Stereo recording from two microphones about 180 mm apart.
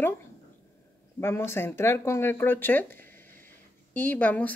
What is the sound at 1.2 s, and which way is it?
Speech, 15° left (ahead or behind).